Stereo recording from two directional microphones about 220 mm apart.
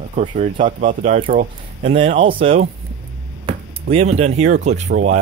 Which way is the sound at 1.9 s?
25° right (ahead or behind).